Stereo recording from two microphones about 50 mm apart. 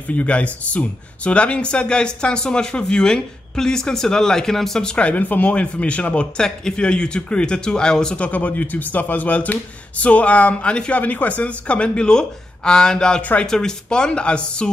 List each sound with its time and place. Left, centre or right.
0.1 s speech: left; by 4.9 s centre
4.9 s speech: left
8.2 s speech: left